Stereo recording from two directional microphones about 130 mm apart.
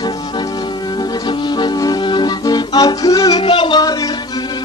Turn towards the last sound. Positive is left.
turn(degrees=30)  # may be behind; listen again after turning